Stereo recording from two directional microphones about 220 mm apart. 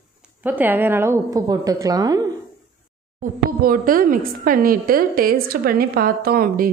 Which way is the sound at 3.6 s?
40° right (ahead or behind).